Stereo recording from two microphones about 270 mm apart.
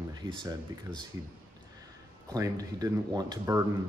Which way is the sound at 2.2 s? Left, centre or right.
Centre.